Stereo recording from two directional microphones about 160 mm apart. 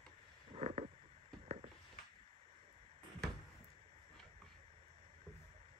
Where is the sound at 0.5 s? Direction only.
40° right (ahead or behind).